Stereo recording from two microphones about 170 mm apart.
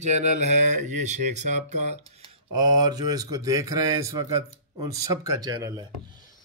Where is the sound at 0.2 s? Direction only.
45° right (ahead or behind).